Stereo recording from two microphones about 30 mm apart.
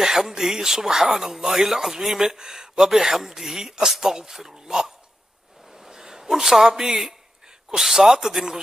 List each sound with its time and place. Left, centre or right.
0.0 s speech: centre
5.7 s a sound: centre
7.7 s speech: centre